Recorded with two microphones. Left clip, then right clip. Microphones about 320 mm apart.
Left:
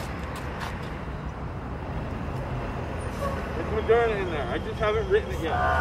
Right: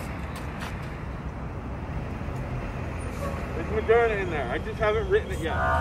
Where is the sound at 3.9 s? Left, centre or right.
Centre.